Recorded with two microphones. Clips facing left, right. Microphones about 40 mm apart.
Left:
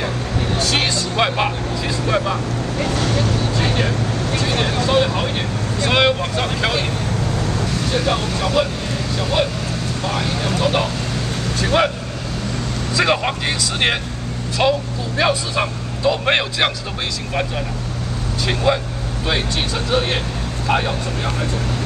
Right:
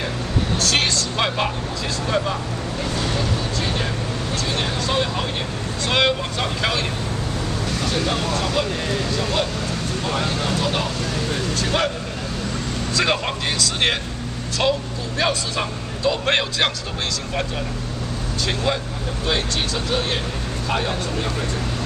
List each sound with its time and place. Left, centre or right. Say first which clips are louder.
0.6 s vehicle: left 1 dB; centre
2.0 s a man's voice: left 3 dB; centre
3.6 s vehicle: left 6 dB; left
4.8 s speech: left 6 dB; centre
7.9 s speech: left 3 dB; centre
10.4 s a man's voice: left 4 dB; centre
11.6 s vehicle: left 6 dB; centre
12.9 s a man's voice: left 4 dB; centre
18.5 s a man's voice: left 5 dB; centre
19.9 s speech: left 3 dB; centre